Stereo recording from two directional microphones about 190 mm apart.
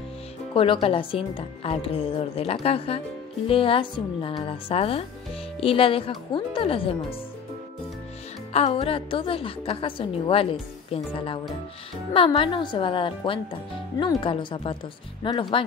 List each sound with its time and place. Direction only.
0.6 s a woman's voice: 30° left (ahead or behind)
8.5 s a woman's voice: 35° left (ahead or behind)